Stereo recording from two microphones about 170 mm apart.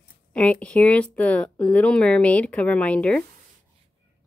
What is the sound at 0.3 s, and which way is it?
Speech, 5° left (ahead or behind).